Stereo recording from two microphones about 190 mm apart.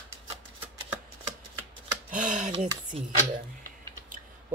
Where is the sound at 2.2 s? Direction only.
40° right (ahead or behind).